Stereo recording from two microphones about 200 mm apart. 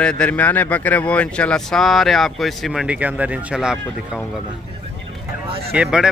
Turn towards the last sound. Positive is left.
turn(degrees=-5)  # may be behind; listen again after turning